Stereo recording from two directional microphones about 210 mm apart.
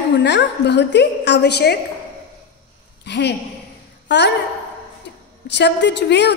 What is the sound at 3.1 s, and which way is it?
Speech, 55° left (ahead or behind).